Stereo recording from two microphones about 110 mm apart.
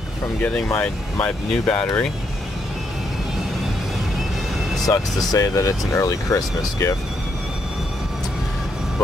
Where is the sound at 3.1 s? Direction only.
5° right (ahead or behind).